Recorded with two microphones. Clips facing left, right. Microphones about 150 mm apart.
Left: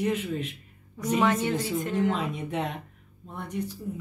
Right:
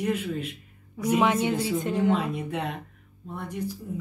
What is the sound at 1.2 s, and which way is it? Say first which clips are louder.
Speech: even; 15° right (ahead or behind).